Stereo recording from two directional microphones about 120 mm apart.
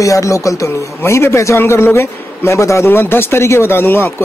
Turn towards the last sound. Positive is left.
turn(degrees=15)  # may be behind; listen again after turning